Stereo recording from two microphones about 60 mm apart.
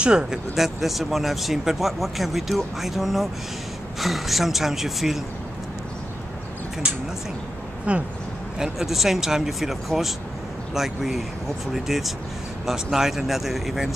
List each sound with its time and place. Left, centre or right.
0.0 s speech: centre
6.8 s speech: centre
8.5 s speech: centre